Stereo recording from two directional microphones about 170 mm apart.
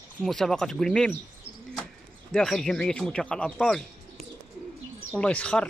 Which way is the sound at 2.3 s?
5° left (ahead or behind).